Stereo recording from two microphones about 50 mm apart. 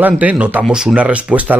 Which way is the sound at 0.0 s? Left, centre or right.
Right.